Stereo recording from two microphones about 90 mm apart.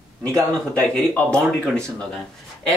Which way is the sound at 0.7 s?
10° left (ahead or behind).